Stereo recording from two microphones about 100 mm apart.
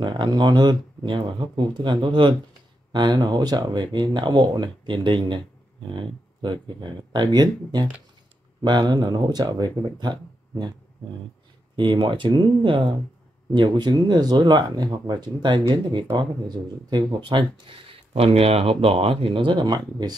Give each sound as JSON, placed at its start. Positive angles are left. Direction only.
{"t": 0.0, "sound": "speech", "side_deg": -50}
{"t": 11.7, "sound": "speech", "side_deg": -55}